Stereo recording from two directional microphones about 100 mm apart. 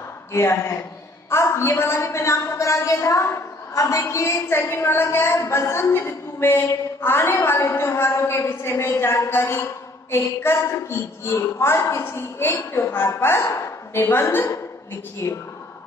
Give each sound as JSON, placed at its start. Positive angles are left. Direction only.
{"t": 0.3, "sound": "a woman's voice", "side_deg": 25}